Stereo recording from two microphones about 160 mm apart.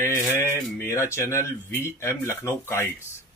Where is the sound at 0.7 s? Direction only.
20° left (ahead or behind).